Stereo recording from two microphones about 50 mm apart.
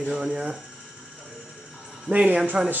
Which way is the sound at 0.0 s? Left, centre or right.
Centre.